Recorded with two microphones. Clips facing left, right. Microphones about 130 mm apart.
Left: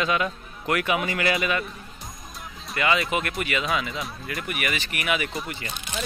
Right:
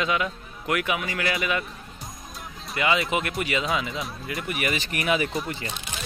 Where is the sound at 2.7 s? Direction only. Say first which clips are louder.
Even; 20° right (ahead or behind).